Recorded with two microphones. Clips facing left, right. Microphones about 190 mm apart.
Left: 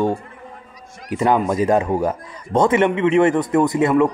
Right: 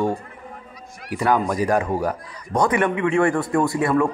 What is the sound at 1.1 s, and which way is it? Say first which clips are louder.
A man's voice: left 3 dB; 25° left (ahead or behind).